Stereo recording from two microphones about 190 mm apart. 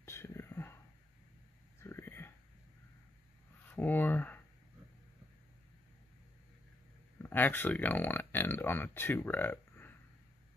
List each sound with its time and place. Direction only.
0.0 s whispering: 15° left (ahead or behind)
1.8 s whispering: 10° left (ahead or behind)
3.7 s a sound: 10° left (ahead or behind)
7.2 s speech: 10° left (ahead or behind)